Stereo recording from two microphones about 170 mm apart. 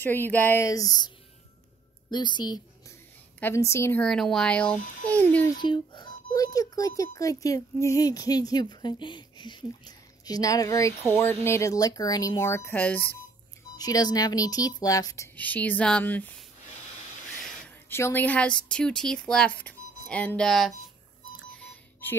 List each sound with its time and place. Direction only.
0.0 s a child's voice: 10° left (ahead or behind)
3.3 s speech: 15° left (ahead or behind)
5.5 s a child's voice: 25° left (ahead or behind); by 13.0 s 10° left (ahead or behind)
13.7 s a child's voice: 20° left (ahead or behind)
15.3 s speech: 10° left (ahead or behind)
17.6 s a woman's voice: 15° left (ahead or behind)
21.5 s a sound: 5° left (ahead or behind)